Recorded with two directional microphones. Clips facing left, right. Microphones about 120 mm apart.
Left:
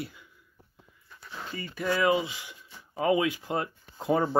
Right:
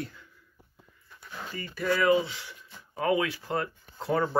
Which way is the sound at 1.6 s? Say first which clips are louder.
Even; 15° left (ahead or behind).